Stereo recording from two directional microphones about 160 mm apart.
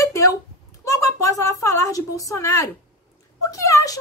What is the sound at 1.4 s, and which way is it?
A woman's voice, 20° left (ahead or behind).